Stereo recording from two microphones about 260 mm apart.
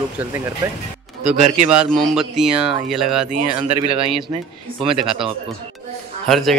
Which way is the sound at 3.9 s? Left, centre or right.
Right.